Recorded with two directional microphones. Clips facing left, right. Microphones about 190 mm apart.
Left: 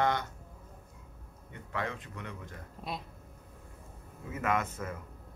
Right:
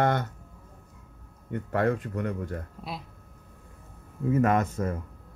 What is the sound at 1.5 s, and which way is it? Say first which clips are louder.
Speech: right 11 dB; 50° right (ahead or behind).